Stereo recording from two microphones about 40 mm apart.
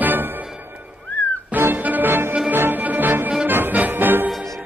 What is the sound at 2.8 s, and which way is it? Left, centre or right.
Music, right.